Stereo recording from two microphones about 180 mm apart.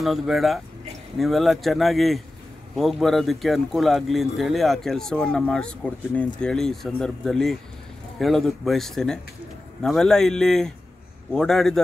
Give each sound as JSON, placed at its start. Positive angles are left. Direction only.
{"t": 0.0, "sound": "speech", "side_deg": 0}